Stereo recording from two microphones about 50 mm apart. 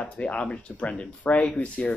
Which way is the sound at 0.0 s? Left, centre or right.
Left.